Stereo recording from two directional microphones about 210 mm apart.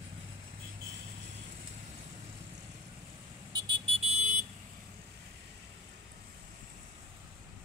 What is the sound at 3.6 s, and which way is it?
Vehicle, 25° right (ahead or behind).